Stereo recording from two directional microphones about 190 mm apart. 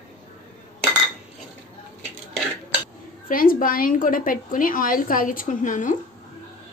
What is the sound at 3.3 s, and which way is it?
A woman's voice, 50° left (ahead or behind).